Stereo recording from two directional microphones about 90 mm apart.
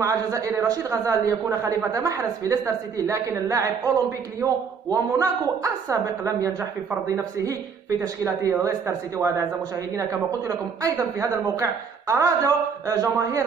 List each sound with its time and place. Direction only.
0.0 s a woman's voice: 35° right (ahead or behind)